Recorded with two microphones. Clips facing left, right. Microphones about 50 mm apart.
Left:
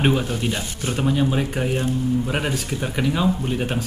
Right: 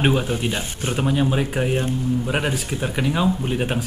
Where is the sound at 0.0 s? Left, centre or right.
Centre.